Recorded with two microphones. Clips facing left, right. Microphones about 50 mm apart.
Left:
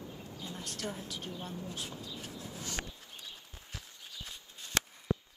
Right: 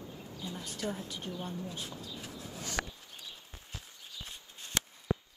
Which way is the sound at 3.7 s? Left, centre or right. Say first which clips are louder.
Even; right.